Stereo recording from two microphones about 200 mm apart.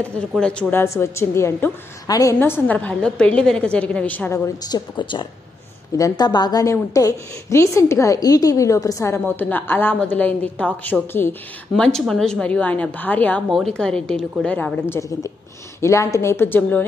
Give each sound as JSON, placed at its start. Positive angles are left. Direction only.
{"t": 0.3, "sound": "a woman's voice", "side_deg": 5}
{"t": 4.6, "sound": "a woman's voice", "side_deg": 20}